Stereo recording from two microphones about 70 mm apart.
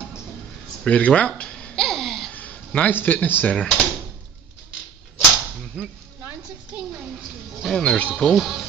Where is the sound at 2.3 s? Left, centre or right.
Left.